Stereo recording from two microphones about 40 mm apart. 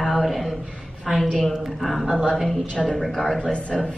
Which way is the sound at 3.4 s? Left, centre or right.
Left.